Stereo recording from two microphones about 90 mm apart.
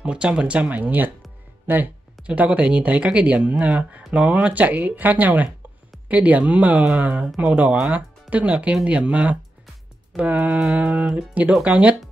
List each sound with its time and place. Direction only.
0.0 s speech: 10° right (ahead or behind)